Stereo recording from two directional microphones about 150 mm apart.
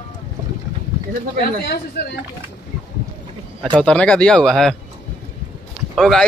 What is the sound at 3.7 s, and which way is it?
Speech, 5° left (ahead or behind).